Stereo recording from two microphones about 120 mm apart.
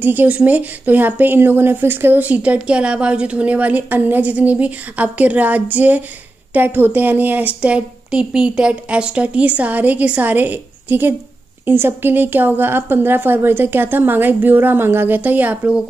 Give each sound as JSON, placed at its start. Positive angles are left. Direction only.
{"t": 0.0, "sound": "speech", "side_deg": -15}